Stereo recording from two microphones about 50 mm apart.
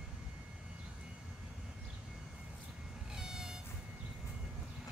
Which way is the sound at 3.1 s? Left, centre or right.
Centre.